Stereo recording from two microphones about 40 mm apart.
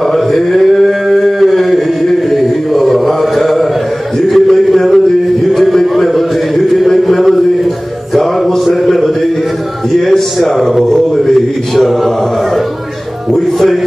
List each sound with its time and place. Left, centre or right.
0.0 s chant: centre
4.3 s a sound: centre
8.1 s music: centre
8.8 s chant: centre
10.1 s a sound: centre
11.7 s mantra: centre